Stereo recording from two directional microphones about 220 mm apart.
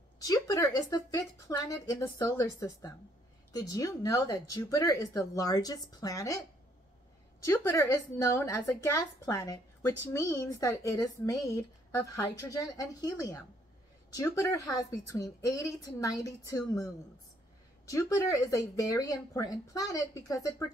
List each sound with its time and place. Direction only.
0.2 s speech: 15° left (ahead or behind)
7.4 s speech: 10° left (ahead or behind)